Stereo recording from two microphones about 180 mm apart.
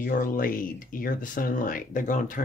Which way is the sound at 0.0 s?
50° left (ahead or behind).